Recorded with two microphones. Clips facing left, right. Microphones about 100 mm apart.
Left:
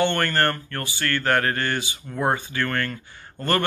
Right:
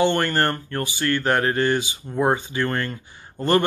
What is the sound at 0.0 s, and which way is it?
Speech, 15° right (ahead or behind).